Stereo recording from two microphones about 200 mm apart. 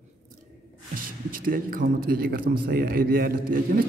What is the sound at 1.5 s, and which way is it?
A man's voice, 45° right (ahead or behind).